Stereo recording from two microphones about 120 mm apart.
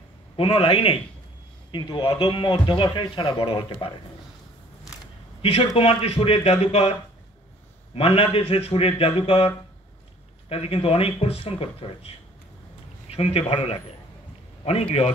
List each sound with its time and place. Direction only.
0.4 s a man's voice: 50° left (ahead or behind)
5.4 s a man's voice: 55° left (ahead or behind)
10.5 s a man's voice: 55° left (ahead or behind)
13.1 s a man's voice: 55° left (ahead or behind)